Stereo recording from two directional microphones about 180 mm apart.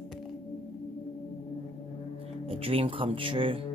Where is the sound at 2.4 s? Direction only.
30° right (ahead or behind).